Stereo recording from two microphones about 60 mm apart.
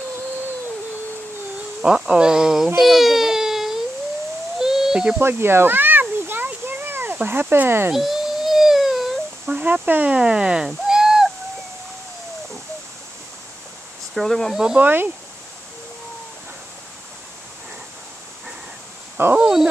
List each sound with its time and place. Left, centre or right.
1.8 s speech: centre
2.8 s baby cry: centre
4.6 s cricket: centre
5.2 s a sound: right
7.2 s speech: right
7.9 s a sound: centre
9.5 s speech: right
10.7 s owl: centre
14.1 s speech: centre
14.8 s speech: right
19.2 s speech: right